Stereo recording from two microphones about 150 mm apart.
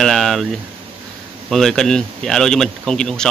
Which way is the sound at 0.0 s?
Centre (ahead or behind).